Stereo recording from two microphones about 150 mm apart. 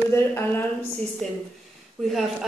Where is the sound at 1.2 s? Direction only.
5° left (ahead or behind).